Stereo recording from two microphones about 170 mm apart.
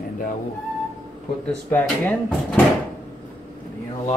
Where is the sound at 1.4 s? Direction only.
10° left (ahead or behind).